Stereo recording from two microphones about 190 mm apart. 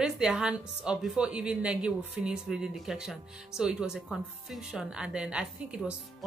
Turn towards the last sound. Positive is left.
turn(degrees=-5)  # may be behind; listen again after turning